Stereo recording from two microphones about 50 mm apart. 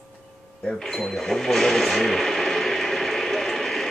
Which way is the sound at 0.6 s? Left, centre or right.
Centre.